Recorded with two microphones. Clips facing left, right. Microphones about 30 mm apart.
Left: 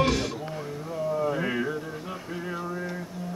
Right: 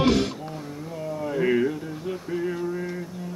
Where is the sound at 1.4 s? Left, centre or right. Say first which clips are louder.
Right 6 dB; centre.